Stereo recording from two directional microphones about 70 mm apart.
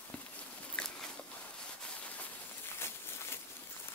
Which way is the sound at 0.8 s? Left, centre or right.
Centre.